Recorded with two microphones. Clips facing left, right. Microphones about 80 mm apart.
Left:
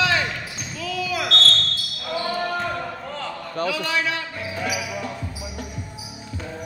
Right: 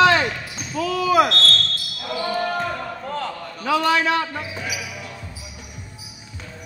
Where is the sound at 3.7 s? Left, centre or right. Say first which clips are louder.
Right 10 dB; right.